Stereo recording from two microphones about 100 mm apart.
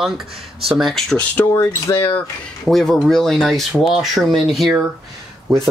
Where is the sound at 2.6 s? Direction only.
5° left (ahead or behind).